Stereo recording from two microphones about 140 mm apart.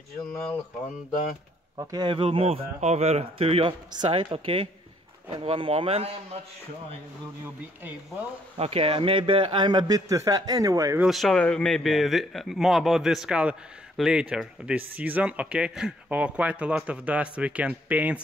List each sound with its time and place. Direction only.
1.8 s speech: 25° right (ahead or behind)
2.0 s speech: 40° right (ahead or behind)
8.5 s a man's voice: 45° right (ahead or behind); by 11.0 s 25° right (ahead or behind)
11.0 s speech: centre (ahead or behind)